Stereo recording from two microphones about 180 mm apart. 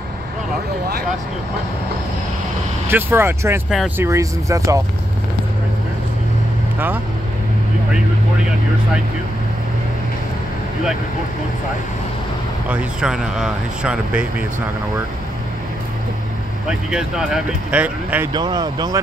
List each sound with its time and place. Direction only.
2.9 s speech: 15° right (ahead or behind)
12.6 s speech: 5° right (ahead or behind)
16.9 s speech: 5° right (ahead or behind)
18.3 s speech: 25° right (ahead or behind)